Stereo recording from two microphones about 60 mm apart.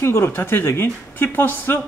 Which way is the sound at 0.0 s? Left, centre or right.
Left.